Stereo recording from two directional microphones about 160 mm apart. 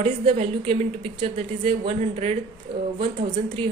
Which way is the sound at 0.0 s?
35° right (ahead or behind).